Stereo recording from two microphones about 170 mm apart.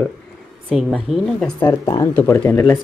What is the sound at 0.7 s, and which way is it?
Speech, centre (ahead or behind).